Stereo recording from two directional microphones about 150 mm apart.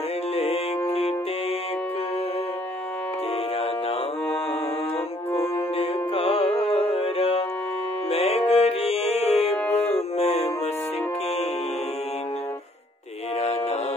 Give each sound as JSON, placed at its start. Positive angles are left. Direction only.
{"t": 0.4, "sound": "music", "side_deg": 40}
{"t": 5.8, "sound": "music", "side_deg": 40}
{"t": 13.4, "sound": "mantra", "side_deg": 45}